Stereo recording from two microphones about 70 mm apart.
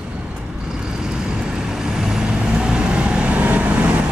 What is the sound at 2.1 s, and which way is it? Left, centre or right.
Vehicle, centre.